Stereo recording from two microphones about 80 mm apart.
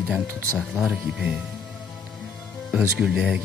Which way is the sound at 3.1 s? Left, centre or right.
Centre.